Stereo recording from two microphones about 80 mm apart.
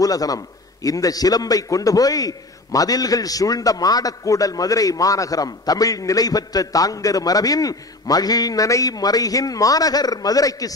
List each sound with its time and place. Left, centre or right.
0.0 s a man's voice: left